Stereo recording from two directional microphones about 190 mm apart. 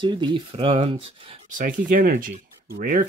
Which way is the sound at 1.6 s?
45° right (ahead or behind).